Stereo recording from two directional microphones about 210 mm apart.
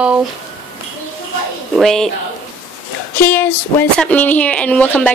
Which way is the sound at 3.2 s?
10° left (ahead or behind).